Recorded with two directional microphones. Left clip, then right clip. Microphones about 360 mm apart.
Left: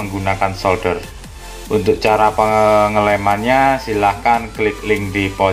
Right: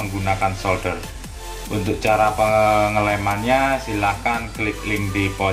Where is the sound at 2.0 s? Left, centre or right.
Left.